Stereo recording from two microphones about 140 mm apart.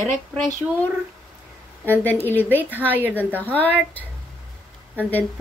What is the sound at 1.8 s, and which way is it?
Speech, 15° left (ahead or behind).